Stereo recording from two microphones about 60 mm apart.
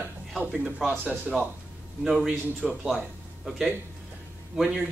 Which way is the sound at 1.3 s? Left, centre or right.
Centre.